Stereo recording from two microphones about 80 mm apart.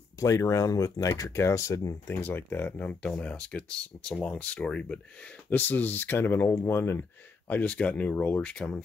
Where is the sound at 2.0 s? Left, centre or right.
Left.